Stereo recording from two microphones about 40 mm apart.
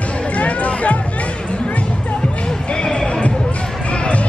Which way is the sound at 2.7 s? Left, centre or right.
Centre.